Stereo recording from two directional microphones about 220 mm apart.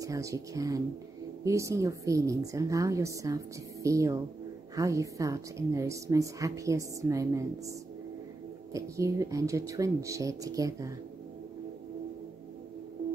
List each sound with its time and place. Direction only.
0.0 s a woman's voice: 15° right (ahead or behind)
8.7 s a woman's voice: 15° right (ahead or behind)